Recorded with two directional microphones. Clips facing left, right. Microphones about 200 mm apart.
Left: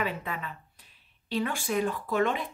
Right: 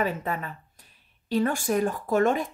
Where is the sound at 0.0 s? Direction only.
45° right (ahead or behind).